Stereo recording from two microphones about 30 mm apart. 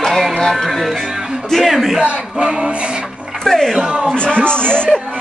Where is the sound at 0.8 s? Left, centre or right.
Centre.